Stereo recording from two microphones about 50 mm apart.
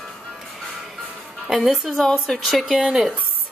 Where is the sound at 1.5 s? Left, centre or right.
Centre.